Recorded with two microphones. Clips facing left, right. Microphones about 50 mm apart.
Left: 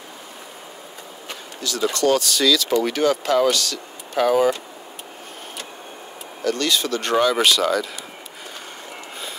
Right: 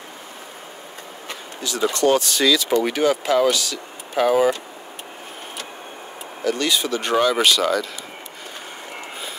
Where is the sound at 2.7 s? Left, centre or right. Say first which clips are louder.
Even; centre.